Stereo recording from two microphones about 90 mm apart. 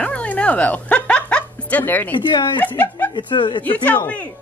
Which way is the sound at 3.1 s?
60° left (ahead or behind).